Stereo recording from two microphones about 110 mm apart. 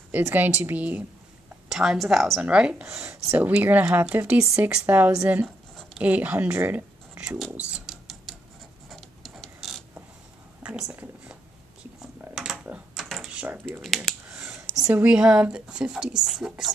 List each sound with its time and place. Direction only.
0.3 s speech: 20° right (ahead or behind)
1.7 s a woman's voice: 5° right (ahead or behind); by 6.8 s 20° right (ahead or behind)
7.2 s a woman's voice: 5° right (ahead or behind)
7.8 s a sound: 5° right (ahead or behind)
8.8 s mechanisms: centre (ahead or behind)
10.6 s speech: 10° right (ahead or behind)
12.0 s typing: 5° right (ahead or behind)
12.9 s a sound: centre (ahead or behind)
13.7 s computer keyboard: centre (ahead or behind)
15.0 s speech: 5° right (ahead or behind)